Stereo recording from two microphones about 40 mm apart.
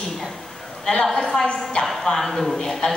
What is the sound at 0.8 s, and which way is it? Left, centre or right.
Speech, centre.